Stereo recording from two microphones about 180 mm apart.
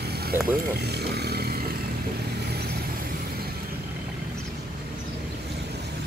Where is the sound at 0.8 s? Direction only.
65° right (ahead or behind).